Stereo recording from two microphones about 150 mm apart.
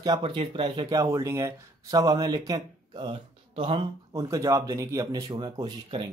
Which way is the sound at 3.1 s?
40° right (ahead or behind).